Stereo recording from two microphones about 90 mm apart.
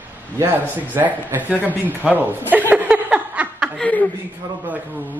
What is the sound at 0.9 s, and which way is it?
Speech, 20° right (ahead or behind).